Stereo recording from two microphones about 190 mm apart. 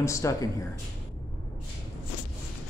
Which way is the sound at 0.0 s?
15° left (ahead or behind).